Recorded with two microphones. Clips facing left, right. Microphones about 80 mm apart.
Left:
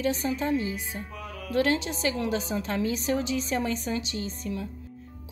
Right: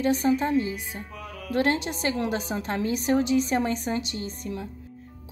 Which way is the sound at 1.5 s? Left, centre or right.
Right.